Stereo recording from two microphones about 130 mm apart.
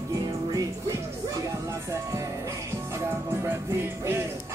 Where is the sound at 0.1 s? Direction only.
25° right (ahead or behind).